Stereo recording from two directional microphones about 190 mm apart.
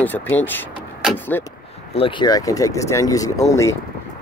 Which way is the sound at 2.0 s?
25° left (ahead or behind).